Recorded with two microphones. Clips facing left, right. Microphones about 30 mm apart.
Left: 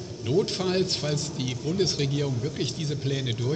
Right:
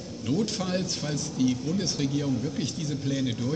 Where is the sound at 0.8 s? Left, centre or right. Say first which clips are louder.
Left 3 dB; left.